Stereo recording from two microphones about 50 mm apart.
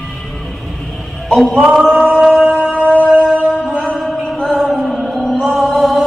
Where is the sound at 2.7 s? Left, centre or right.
Left.